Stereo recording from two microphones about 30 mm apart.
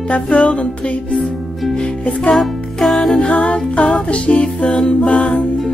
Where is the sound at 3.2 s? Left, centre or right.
Left.